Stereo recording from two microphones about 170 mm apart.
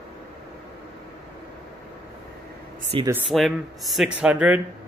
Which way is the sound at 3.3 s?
Centre (ahead or behind).